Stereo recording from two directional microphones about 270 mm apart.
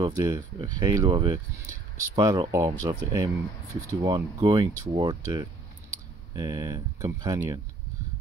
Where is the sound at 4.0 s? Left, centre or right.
Centre.